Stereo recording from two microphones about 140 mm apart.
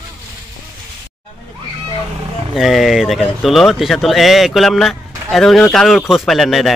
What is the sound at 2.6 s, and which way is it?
Speech, centre (ahead or behind).